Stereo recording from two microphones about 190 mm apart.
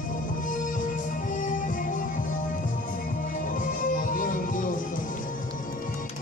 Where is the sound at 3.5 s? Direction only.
45° left (ahead or behind).